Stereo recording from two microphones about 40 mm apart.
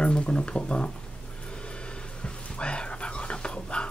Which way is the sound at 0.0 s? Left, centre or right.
Left.